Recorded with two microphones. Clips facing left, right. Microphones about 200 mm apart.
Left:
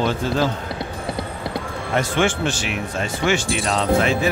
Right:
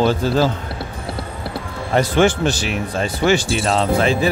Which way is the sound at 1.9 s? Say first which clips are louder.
Right 5 dB; 35° right (ahead or behind).